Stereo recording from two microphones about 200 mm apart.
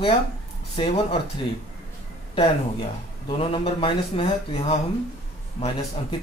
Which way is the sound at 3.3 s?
25° left (ahead or behind).